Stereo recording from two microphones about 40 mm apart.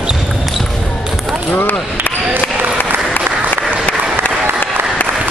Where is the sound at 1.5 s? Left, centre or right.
Left.